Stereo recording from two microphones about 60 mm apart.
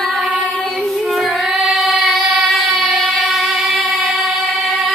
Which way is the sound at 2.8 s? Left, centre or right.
Centre.